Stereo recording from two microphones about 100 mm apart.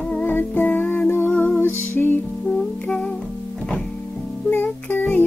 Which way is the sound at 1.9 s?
20° left (ahead or behind).